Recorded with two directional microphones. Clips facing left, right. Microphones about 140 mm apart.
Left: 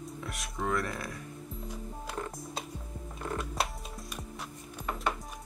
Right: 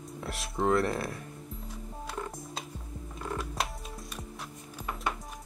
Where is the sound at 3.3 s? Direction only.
Centre (ahead or behind).